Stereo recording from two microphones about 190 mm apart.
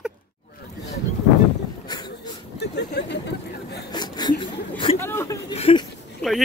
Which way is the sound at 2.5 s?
60° left (ahead or behind).